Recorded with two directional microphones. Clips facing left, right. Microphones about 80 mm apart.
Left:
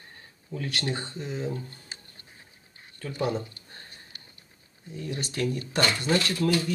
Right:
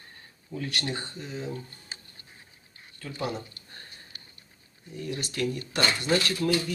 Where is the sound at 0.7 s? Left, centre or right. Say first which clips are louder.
Left 2 dB; left.